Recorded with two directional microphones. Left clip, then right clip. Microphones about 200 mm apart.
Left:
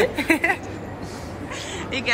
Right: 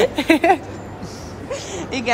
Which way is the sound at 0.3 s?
50° right (ahead or behind).